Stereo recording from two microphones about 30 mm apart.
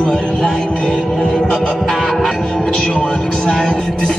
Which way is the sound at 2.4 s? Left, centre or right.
Left.